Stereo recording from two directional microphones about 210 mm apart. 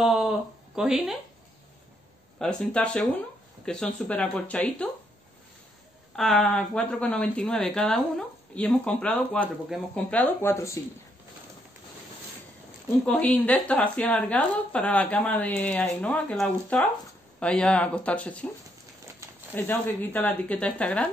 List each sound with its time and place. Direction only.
0.0 s speech: centre (ahead or behind)
2.3 s a woman's voice: 5° left (ahead or behind)
6.1 s a woman's voice: centre (ahead or behind)
13.0 s a woman's voice: 5° left (ahead or behind)
19.5 s a woman's voice: 10° left (ahead or behind)